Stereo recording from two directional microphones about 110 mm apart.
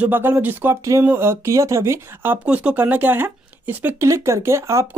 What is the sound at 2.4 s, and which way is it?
Speech, 10° right (ahead or behind).